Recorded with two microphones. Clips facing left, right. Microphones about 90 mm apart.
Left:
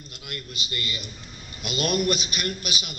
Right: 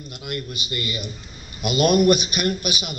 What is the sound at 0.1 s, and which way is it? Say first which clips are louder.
A man's voice: right 8 dB; 20° right (ahead or behind).